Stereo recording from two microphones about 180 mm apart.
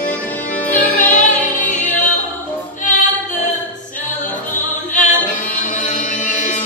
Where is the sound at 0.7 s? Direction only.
45° left (ahead or behind).